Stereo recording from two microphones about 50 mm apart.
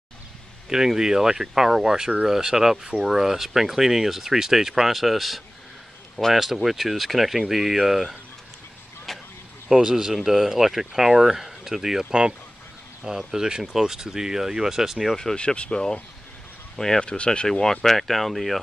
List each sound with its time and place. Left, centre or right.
0.7 s speech: centre
9.1 s vehicle: centre
9.7 s speech: centre
13.2 s speech: centre
15.3 s speech: left; by 18.6 s centre